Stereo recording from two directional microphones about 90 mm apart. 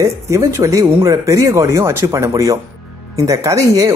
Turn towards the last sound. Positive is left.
turn(degrees=-35)  # may be behind; listen again after turning